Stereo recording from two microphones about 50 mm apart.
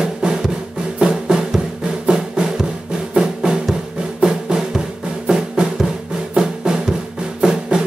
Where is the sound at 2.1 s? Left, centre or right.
Centre.